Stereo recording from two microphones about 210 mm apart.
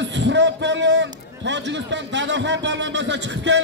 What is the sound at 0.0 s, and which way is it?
A man's voice, 60° right (ahead or behind).